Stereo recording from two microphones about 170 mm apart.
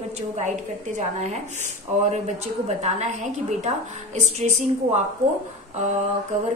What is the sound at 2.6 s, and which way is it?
A woman's voice, 40° right (ahead or behind).